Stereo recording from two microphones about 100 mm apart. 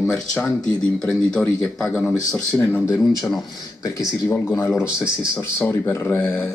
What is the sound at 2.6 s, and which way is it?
Speech, 25° left (ahead or behind).